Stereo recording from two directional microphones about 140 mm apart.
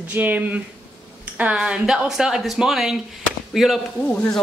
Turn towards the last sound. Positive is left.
turn(degrees=10)  # may be behind; listen again after turning